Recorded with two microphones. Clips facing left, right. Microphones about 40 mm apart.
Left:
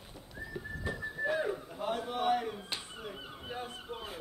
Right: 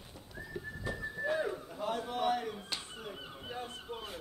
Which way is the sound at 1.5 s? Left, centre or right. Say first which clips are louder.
Left 1 dB; left.